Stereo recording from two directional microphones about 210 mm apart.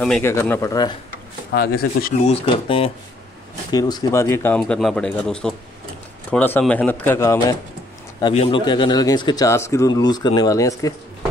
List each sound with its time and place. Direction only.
0.0 s speech: 10° left (ahead or behind)
1.5 s speech: 45° left (ahead or behind)
2.3 s speech: 25° left (ahead or behind)
3.7 s speech: 15° left (ahead or behind)
8.2 s speech: 25° left (ahead or behind)